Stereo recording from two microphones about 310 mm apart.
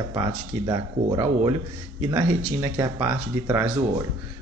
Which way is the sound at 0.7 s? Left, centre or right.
Centre.